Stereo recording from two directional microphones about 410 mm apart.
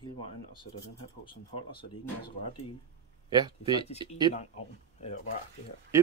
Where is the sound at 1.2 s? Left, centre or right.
Centre.